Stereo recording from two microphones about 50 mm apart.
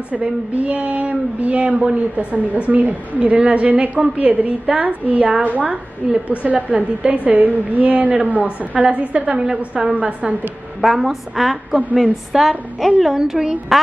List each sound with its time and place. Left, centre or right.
0.1 s a woman's voice: right
10.8 s a woman's voice: centre